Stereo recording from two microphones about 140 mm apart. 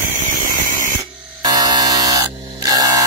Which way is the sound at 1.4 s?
25° right (ahead or behind).